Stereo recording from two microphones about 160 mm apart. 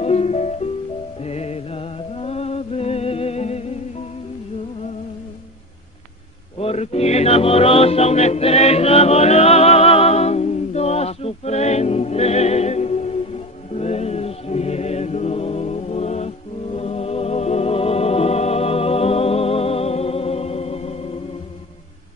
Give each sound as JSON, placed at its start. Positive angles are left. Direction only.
{"t": 0.0, "sound": "music", "side_deg": 40}
{"t": 6.6, "sound": "music", "side_deg": 40}